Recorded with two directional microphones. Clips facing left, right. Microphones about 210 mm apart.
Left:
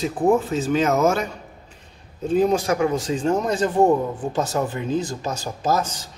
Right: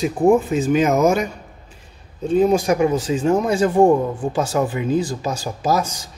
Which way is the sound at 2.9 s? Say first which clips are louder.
Right 3 dB; 5° right (ahead or behind).